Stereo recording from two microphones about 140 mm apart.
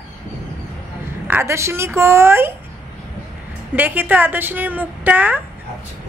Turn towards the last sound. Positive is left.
turn(degrees=-15)  # may be behind; listen again after turning